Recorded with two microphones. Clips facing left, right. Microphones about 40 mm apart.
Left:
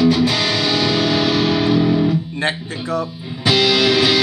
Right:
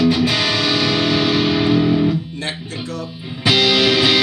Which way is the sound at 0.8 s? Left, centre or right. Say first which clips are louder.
Even; centre.